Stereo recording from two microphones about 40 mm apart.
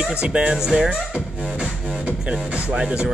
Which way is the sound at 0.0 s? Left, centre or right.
Right.